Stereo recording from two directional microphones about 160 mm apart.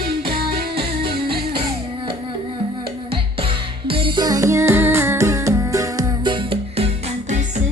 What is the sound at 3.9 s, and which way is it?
Music, 30° right (ahead or behind).